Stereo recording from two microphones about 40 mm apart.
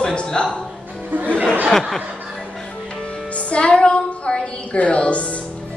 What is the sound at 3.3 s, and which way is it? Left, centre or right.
Music, left.